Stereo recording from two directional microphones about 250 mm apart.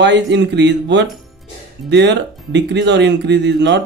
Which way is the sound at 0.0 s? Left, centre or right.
Right.